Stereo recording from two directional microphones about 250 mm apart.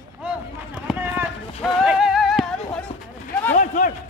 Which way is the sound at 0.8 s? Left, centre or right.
Centre.